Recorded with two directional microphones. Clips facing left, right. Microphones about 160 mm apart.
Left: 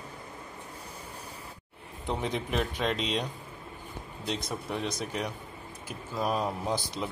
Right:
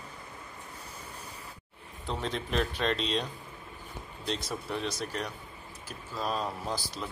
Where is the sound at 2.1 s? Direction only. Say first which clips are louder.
Left 2 dB; 15° left (ahead or behind).